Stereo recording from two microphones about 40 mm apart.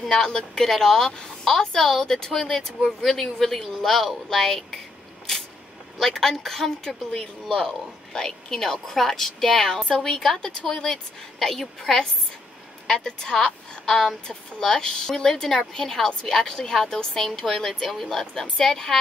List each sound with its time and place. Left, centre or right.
0.0 s a woman's voice: centre
5.9 s a woman's voice: centre